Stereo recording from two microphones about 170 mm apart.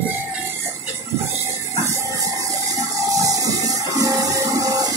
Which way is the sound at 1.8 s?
20° right (ahead or behind).